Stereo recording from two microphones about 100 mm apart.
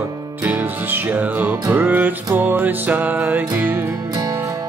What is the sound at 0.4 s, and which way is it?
Music, 15° right (ahead or behind).